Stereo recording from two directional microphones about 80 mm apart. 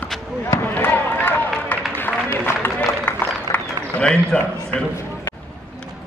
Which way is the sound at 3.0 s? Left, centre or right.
Left.